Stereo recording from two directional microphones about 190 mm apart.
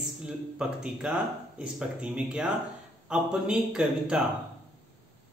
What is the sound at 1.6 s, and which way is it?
Speech, 5° right (ahead or behind).